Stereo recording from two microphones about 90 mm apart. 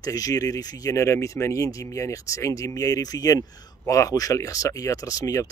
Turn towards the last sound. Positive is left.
turn(degrees=40)  # may be behind; listen again after turning